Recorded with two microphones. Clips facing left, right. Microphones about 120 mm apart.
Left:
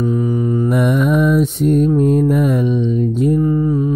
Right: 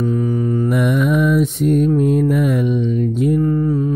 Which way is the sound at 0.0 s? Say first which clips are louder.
Left 1 dB; 15° left (ahead or behind).